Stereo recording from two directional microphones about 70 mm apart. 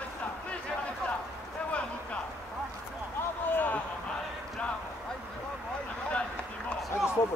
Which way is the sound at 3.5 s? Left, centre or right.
Left.